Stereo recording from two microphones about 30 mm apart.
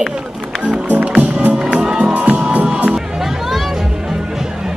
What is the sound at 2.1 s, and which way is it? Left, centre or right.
Music, right.